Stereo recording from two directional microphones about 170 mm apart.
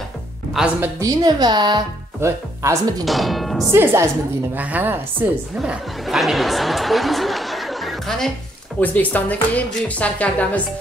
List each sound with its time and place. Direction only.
0.6 s a woman's voice: centre (ahead or behind)
0.9 s a woman's voice: 20° right (ahead or behind)
3.1 s speech: centre (ahead or behind)
3.7 s a woman's voice: 15° right (ahead or behind)
5.6 s a woman's voice: centre (ahead or behind)